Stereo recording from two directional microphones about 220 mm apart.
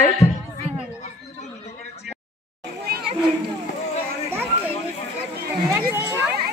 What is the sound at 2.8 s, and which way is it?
Children playing, 45° right (ahead or behind).